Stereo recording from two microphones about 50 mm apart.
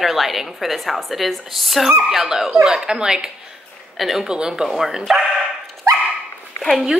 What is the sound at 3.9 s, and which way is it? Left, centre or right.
Speech, centre.